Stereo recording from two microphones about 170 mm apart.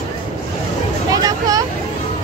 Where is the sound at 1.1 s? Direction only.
20° right (ahead or behind).